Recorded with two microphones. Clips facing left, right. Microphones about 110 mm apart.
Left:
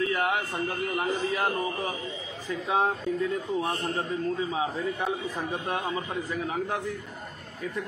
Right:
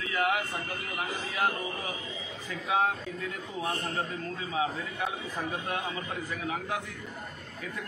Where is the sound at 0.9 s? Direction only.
25° left (ahead or behind).